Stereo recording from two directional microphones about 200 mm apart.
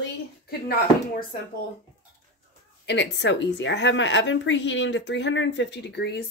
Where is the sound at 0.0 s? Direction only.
50° left (ahead or behind).